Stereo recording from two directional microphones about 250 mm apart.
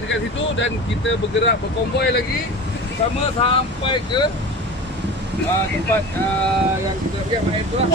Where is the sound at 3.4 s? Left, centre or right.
Centre.